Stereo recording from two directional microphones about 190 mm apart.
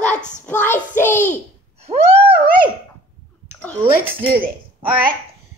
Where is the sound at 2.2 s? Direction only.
25° right (ahead or behind).